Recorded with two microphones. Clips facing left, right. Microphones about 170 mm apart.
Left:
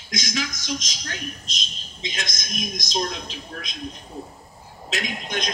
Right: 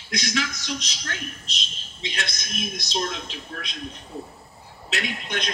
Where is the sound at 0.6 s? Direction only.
40° left (ahead or behind).